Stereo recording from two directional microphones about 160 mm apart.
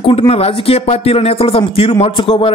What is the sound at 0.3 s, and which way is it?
Speech, 40° left (ahead or behind).